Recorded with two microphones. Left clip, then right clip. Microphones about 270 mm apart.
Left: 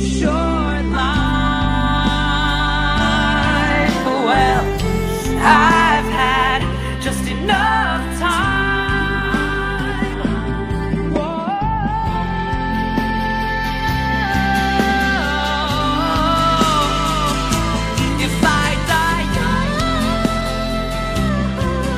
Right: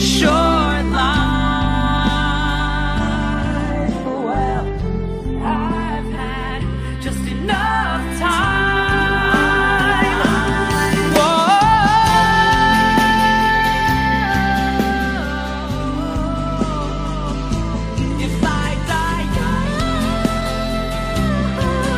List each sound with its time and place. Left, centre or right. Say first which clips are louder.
0.2 s music: right 4 dB; centre
4.3 s music: left 7 dB; left
5.4 s music: left 12 dB; left
7.4 s music: left 2 dB; centre
11.1 s music: right 9 dB; right